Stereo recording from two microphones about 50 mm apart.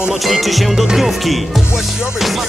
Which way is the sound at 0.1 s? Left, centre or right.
Centre.